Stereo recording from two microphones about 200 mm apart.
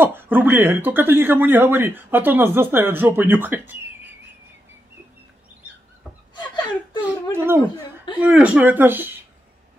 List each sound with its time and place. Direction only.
0.0 s speech: 10° right (ahead or behind)
6.9 s whimper: 20° left (ahead or behind)
7.3 s speech: 10° right (ahead or behind)